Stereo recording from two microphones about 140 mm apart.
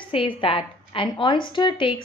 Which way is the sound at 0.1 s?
40° left (ahead or behind).